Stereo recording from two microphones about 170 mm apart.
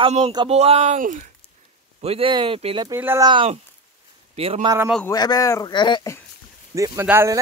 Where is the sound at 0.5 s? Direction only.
40° right (ahead or behind).